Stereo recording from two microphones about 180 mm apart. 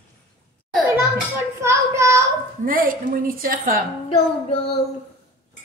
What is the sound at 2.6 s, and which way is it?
A woman's voice, 50° right (ahead or behind).